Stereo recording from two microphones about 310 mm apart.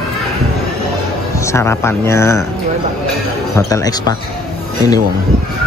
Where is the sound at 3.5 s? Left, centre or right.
Centre.